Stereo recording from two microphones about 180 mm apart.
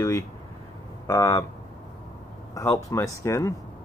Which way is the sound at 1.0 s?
15° left (ahead or behind).